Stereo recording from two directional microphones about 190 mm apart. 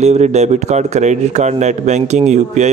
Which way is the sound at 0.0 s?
35° right (ahead or behind).